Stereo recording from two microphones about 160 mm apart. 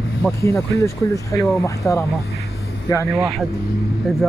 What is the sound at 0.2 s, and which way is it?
Speech, 20° left (ahead or behind).